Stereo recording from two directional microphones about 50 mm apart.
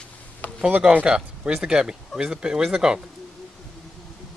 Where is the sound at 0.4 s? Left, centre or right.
Left.